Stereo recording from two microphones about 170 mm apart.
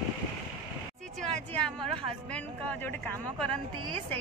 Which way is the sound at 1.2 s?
5° left (ahead or behind).